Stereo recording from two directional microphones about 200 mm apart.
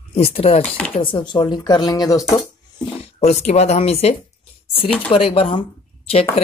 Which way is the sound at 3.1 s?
30° left (ahead or behind).